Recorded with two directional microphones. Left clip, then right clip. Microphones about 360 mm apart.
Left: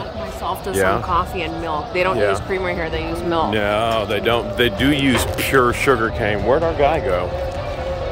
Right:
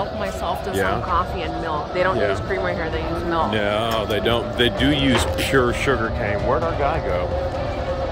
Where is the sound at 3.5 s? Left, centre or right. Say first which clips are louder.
Left 3 dB; centre.